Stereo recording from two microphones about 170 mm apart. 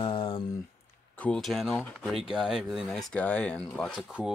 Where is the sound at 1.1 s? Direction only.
5° left (ahead or behind).